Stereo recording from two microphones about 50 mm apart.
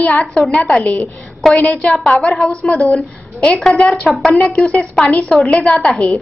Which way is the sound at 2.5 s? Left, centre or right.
Left.